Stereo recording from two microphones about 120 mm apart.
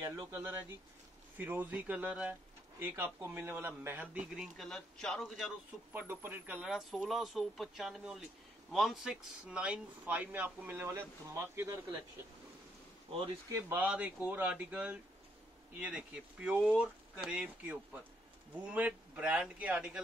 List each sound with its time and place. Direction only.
0.0 s speech: 20° right (ahead or behind)
4.6 s speech: centre (ahead or behind)
5.9 s speech: 20° right (ahead or behind)
13.5 s speech: 20° right (ahead or behind)